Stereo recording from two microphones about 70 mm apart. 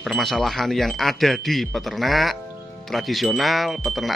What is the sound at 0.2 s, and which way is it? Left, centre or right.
Speech, centre.